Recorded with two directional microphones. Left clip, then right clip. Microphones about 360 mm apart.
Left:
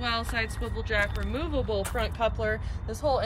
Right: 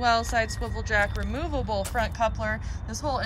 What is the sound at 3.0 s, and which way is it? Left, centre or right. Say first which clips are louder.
Speech: left 3 dB; centre.